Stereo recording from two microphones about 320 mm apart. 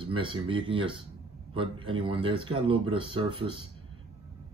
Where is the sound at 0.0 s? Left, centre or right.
Centre.